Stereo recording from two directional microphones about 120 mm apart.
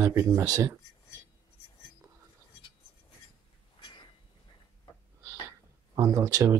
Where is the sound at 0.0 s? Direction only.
20° right (ahead or behind).